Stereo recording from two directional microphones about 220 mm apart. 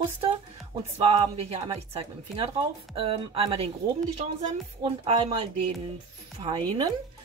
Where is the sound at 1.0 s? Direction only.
25° right (ahead or behind).